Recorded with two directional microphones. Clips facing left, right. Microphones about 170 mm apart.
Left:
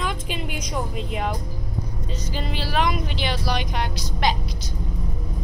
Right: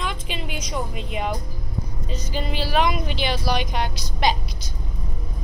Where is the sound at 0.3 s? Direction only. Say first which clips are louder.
Left 1 dB; 50° left (ahead or behind).